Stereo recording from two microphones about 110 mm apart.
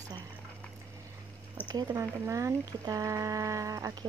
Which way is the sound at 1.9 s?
25° right (ahead or behind).